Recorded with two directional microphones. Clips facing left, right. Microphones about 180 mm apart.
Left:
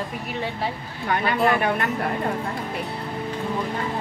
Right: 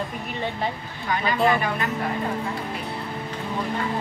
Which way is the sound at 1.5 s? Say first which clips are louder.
Left 3 dB; 60° left (ahead or behind).